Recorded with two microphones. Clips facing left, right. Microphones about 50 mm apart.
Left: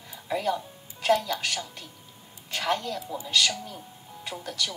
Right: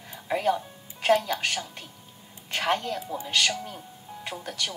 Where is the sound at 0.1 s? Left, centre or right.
Right.